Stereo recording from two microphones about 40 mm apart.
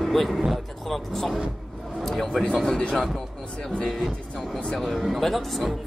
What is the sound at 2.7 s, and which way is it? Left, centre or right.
Speech, left.